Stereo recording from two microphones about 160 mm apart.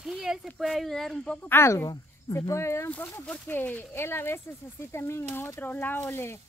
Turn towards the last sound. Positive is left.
turn(degrees=15)  # may be behind; listen again after turning